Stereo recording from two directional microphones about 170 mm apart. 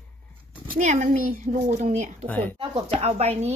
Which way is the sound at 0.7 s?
45° right (ahead or behind).